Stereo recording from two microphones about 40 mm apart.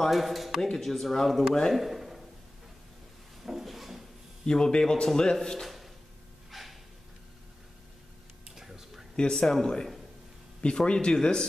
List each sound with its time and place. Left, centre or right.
0.1 s speech: centre
0.6 s speech: centre
1.8 s a sound: centre
3.4 s drawer open or close: centre
4.5 s speech: centre
6.5 s a sound: centre
8.5 s a sound: centre
9.1 s speech: left
10.9 s speech: left